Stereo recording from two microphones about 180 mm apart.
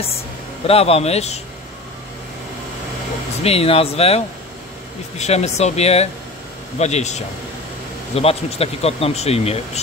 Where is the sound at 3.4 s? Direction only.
35° left (ahead or behind).